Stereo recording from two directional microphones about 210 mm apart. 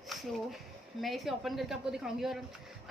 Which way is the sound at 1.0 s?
Centre (ahead or behind).